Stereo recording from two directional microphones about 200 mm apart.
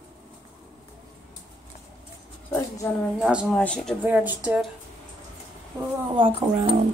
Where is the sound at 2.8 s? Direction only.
10° left (ahead or behind).